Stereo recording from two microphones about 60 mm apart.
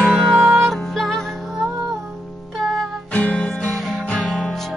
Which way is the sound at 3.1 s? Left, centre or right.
Left.